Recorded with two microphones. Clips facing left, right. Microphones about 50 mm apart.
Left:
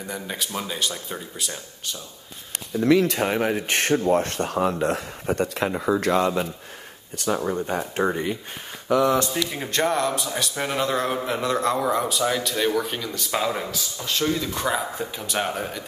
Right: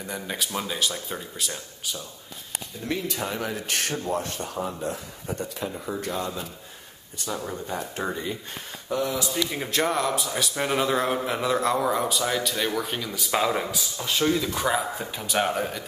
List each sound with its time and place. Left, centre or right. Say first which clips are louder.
0.1 s a man's voice: even; centre
2.8 s speech: left 12 dB; left
3.2 s speech: left 7 dB; left
4.1 s a man's voice: left 7 dB; left
5.2 s a man's voice: left 7 dB; left
7.3 s speech: left 6 dB; left
8.1 s speech: left 5 dB; left
8.8 s speech: left 8 dB; left
9.5 s a man's voice: left 2 dB; centre